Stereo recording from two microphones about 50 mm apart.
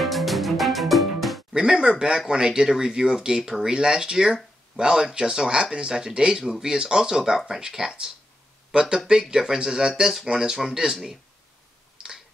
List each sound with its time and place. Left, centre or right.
0.0 s music: centre
1.5 s speech: centre
12.0 s computer keyboard: centre